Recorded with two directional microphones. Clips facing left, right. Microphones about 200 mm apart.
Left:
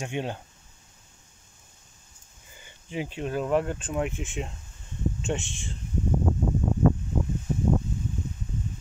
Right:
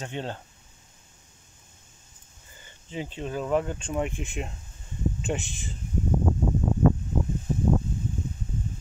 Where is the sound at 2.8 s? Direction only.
10° left (ahead or behind).